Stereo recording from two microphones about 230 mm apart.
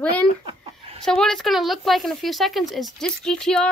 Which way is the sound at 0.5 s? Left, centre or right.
Right.